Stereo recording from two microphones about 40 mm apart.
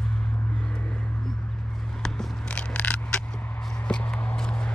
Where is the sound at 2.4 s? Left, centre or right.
Left.